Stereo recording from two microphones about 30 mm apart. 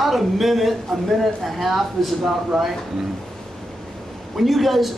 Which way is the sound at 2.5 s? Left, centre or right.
Centre.